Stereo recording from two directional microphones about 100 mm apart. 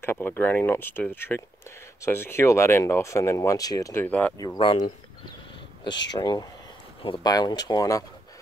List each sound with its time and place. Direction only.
0.0 s speech: 25° left (ahead or behind)
3.9 s speech: 15° left (ahead or behind)
4.6 s speech: 55° left (ahead or behind)
5.9 s speech: 40° left (ahead or behind)